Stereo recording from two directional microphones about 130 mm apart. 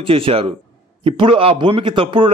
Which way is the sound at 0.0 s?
45° right (ahead or behind).